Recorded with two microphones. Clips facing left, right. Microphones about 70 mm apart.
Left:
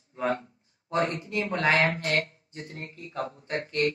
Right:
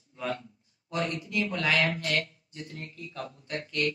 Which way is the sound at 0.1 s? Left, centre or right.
Left.